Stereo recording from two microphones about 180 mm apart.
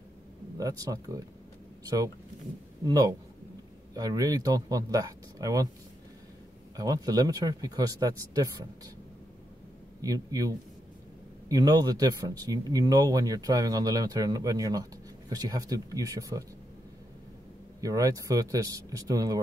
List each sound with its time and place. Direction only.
0.6 s speech: 20° right (ahead or behind)
2.8 s speech: 20° right (ahead or behind)
6.8 s speech: 20° right (ahead or behind)
10.0 s speech: 20° right (ahead or behind)
17.7 s speech: 20° right (ahead or behind)